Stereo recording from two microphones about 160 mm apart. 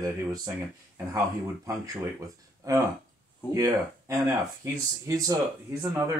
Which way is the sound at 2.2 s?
20° right (ahead or behind).